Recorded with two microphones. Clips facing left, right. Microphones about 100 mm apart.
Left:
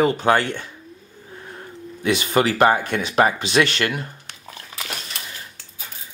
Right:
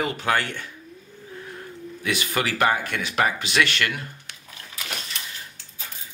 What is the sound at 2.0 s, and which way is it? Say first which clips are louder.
Speech: left 7 dB; 30° left (ahead or behind).